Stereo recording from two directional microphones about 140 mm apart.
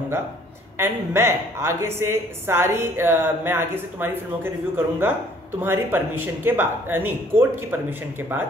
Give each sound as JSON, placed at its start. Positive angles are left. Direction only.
{"t": 0.7, "sound": "a woman's voice", "side_deg": -15}